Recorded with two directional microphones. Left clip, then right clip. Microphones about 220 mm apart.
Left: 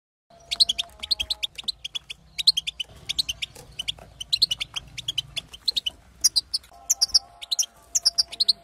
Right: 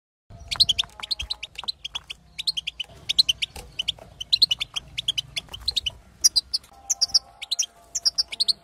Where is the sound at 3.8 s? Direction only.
10° right (ahead or behind).